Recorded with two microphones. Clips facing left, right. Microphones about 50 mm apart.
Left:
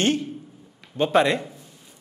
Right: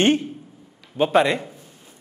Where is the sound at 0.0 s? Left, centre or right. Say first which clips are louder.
Right 4 dB; right.